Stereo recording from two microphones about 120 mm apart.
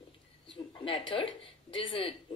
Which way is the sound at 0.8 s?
45° left (ahead or behind).